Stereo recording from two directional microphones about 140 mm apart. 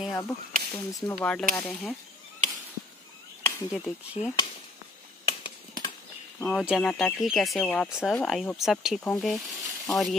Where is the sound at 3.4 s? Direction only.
15° left (ahead or behind).